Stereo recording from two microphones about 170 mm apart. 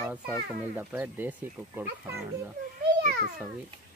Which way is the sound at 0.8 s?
10° right (ahead or behind).